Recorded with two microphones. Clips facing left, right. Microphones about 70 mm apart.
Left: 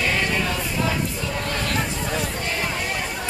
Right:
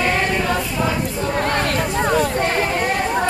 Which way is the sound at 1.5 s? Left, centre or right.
Right.